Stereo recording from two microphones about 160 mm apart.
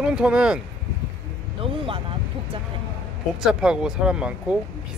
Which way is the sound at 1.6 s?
35° right (ahead or behind).